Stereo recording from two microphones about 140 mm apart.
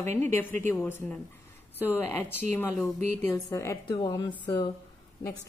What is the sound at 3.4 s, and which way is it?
Speech, 25° left (ahead or behind).